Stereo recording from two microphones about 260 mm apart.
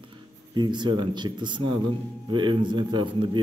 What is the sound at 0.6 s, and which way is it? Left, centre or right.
Speech, centre.